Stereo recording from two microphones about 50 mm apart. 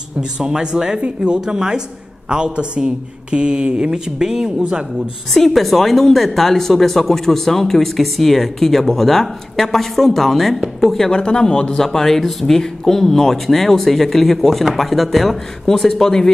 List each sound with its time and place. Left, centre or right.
0.4 s speech: centre
5.3 s a woman's voice: centre
11.1 s a woman's voice: centre